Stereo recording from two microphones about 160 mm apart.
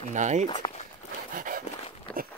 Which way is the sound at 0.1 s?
50° right (ahead or behind).